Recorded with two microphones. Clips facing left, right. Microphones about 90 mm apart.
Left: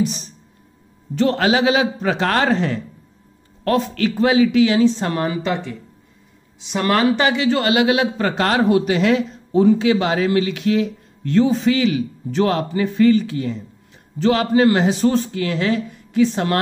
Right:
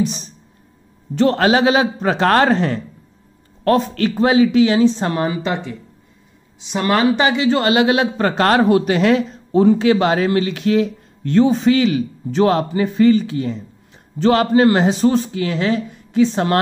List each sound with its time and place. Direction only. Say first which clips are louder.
1.1 s a man's voice: right 3 dB; 40° right (ahead or behind); by 13.6 s 25° right (ahead or behind)
14.1 s speech: right 2 dB; 45° right (ahead or behind)